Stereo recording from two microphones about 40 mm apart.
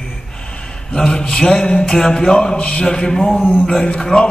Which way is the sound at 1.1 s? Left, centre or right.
Centre.